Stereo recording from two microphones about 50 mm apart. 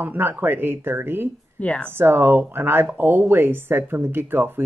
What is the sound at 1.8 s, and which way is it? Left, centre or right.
Speech, right.